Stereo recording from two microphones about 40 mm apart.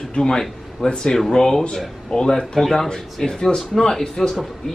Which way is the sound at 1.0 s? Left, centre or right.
Centre.